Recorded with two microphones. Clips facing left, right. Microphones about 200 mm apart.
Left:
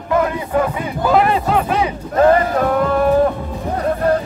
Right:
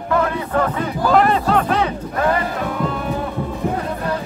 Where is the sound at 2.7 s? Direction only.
55° left (ahead or behind).